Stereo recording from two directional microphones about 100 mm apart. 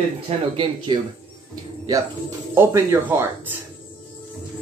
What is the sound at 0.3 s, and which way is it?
Speech, 75° right (ahead or behind).